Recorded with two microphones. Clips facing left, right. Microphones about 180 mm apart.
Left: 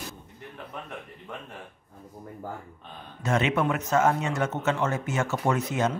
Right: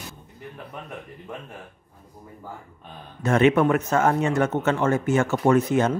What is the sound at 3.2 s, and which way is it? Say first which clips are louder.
Speech: right 7 dB; 55° right (ahead or behind).